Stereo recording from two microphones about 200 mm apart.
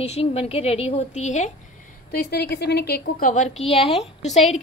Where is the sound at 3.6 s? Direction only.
30° left (ahead or behind).